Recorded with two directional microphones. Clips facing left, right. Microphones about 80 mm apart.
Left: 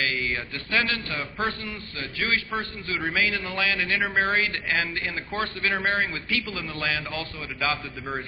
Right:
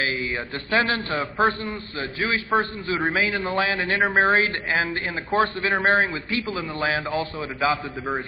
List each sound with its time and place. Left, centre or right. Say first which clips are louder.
0.0 s a man's voice: right 2 dB; right